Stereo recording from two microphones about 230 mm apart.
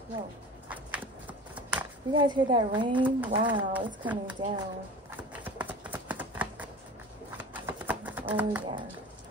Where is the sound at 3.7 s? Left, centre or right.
Centre.